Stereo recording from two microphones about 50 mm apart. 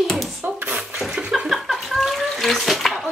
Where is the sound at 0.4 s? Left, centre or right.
Right.